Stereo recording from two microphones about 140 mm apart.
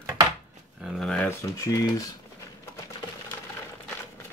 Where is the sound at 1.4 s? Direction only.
20° left (ahead or behind).